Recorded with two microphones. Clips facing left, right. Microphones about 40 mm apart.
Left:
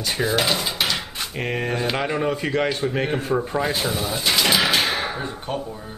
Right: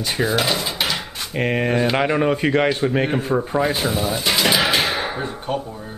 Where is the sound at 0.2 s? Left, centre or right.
Centre.